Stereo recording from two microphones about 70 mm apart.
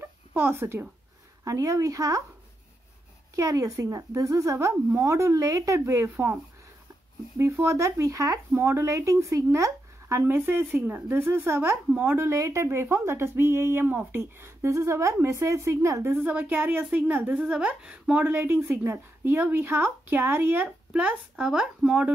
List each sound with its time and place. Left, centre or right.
0.0 s a sound: right
1.4 s speech: right
3.3 s speech: right
8.5 s speech: right
10.2 s speech: right
12.3 s speech: right
16.2 s speech: right
20.9 s speech: centre